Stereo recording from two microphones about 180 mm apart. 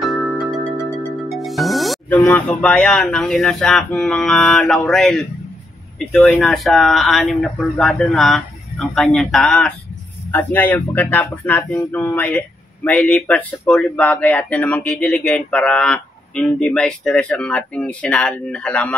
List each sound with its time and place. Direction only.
0.0 s music: centre (ahead or behind)
2.0 s speech: 10° left (ahead or behind)